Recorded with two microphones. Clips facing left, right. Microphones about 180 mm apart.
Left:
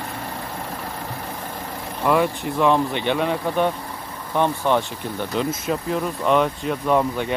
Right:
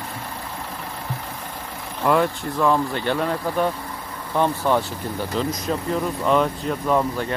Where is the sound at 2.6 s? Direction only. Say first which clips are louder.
Left 1 dB; 20° left (ahead or behind).